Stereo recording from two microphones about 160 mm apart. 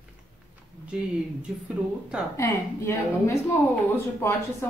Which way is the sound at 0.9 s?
5° right (ahead or behind).